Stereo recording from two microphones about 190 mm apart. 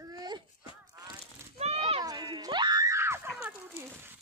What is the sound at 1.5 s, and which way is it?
Screaming, 30° right (ahead or behind).